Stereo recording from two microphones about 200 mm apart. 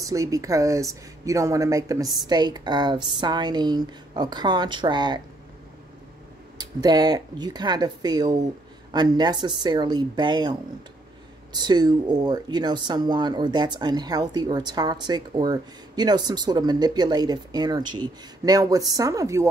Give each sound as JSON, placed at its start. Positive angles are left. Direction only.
{"t": 0.0, "sound": "a woman's voice", "side_deg": -15}
{"t": 6.6, "sound": "speech", "side_deg": -20}